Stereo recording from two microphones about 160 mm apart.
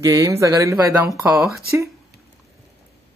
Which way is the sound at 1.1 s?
5° right (ahead or behind).